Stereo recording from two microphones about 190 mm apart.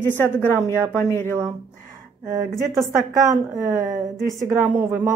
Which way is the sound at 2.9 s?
15° right (ahead or behind).